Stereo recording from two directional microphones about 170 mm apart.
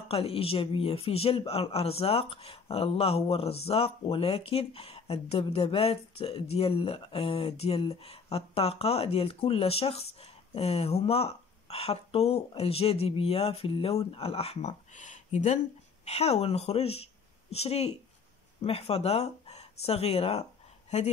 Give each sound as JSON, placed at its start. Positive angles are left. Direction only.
{"t": 0.1, "sound": "a woman's voice", "side_deg": 35}